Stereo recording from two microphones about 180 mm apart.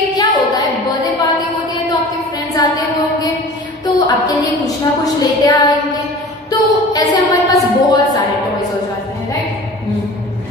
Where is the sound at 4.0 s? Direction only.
20° left (ahead or behind).